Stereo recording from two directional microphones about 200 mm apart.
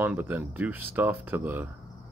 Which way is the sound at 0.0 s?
10° right (ahead or behind).